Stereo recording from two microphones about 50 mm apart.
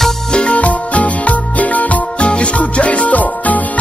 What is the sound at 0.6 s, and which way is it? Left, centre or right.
Music, left.